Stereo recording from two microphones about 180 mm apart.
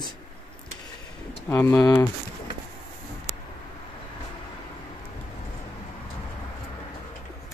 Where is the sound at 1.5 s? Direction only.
10° left (ahead or behind).